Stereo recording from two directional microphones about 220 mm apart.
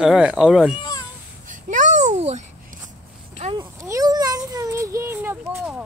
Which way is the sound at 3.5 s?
15° right (ahead or behind).